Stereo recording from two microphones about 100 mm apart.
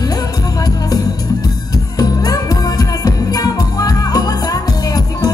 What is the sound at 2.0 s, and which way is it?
Music, 40° left (ahead or behind).